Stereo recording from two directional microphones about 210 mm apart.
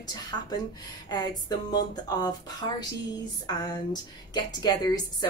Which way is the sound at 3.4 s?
20° left (ahead or behind).